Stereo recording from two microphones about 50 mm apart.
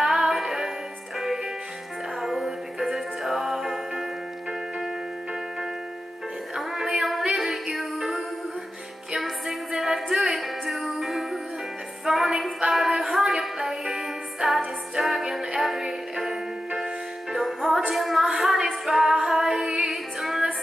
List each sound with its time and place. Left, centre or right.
0.0 s music: centre
9.2 s music: centre
12.0 s a sound: centre
15.0 s music: centre
17.9 s a sound: centre
18.9 s female singing: centre